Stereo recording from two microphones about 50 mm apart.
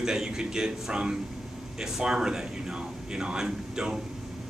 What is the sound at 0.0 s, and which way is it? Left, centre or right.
Speech, centre.